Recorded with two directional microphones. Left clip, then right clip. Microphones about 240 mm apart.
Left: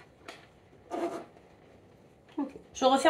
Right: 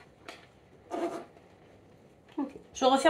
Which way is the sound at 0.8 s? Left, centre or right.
Centre.